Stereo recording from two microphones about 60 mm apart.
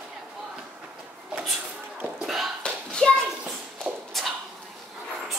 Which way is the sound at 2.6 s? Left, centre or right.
Centre.